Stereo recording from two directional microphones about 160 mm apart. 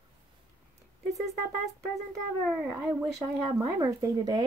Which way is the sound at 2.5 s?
10° right (ahead or behind).